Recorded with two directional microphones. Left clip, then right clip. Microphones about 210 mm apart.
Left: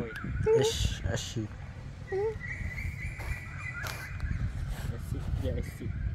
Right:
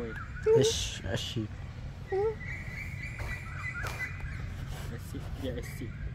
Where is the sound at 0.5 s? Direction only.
5° right (ahead or behind).